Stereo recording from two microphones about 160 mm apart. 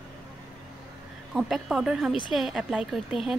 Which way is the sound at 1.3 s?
Centre (ahead or behind).